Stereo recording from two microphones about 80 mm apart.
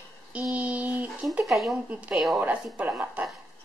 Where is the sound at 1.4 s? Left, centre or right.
Centre.